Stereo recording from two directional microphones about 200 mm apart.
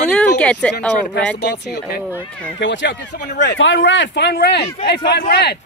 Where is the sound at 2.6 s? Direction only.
65° left (ahead or behind).